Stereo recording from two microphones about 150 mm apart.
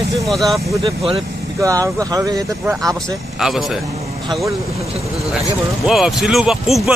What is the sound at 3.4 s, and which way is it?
Speech, centre (ahead or behind).